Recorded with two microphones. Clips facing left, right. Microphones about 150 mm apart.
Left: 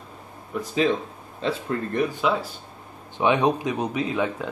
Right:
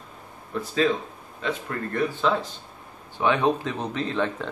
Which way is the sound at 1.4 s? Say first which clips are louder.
Left 3 dB; 30° left (ahead or behind).